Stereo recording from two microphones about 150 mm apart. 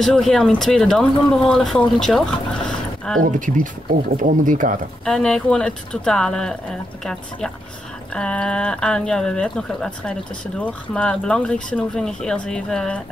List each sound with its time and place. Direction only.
0.0 s speech: centre (ahead or behind)
3.3 s speech: 60° right (ahead or behind)
5.0 s speech: 5° left (ahead or behind)